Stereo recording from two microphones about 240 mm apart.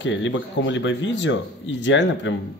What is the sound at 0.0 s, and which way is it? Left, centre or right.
Speech, left.